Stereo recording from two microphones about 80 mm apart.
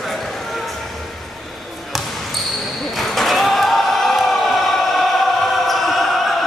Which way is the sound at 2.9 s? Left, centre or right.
Centre.